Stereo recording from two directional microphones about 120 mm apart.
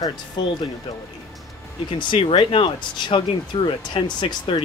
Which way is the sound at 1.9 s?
40° left (ahead or behind).